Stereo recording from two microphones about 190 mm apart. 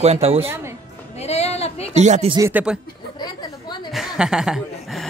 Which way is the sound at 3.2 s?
20° left (ahead or behind).